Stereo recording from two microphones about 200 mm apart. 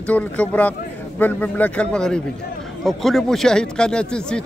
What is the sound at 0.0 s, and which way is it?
A man's voice, 5° left (ahead or behind).